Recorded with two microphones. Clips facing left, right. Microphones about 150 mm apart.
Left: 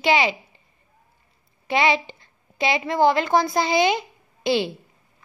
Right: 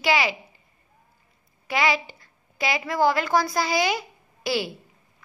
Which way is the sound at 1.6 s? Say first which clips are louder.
Left 3 dB; 25° left (ahead or behind).